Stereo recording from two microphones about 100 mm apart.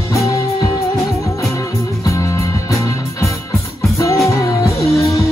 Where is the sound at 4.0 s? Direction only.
30° left (ahead or behind).